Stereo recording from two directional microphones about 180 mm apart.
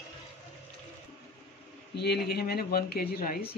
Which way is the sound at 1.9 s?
65° left (ahead or behind).